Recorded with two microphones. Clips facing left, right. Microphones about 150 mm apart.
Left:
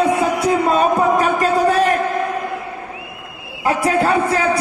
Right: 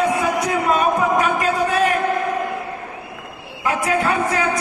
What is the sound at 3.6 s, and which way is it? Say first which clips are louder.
Speech: left 3 dB; 35° left (ahead or behind).